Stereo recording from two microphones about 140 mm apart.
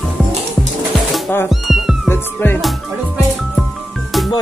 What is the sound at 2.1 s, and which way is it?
Music, 15° left (ahead or behind).